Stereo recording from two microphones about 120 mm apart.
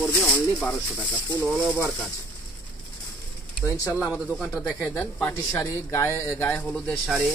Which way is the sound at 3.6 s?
20° left (ahead or behind).